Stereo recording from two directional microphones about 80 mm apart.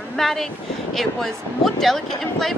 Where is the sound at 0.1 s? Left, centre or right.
Centre.